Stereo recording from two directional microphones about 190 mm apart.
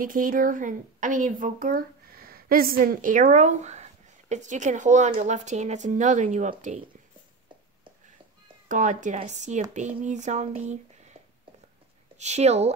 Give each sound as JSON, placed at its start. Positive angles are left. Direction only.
{"t": 0.0, "sound": "speech", "side_deg": -45}
{"t": 8.6, "sound": "speech", "side_deg": -40}
{"t": 12.2, "sound": "speech", "side_deg": -35}